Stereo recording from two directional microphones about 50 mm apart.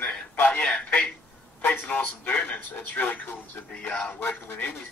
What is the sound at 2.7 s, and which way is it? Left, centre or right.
Speech, left.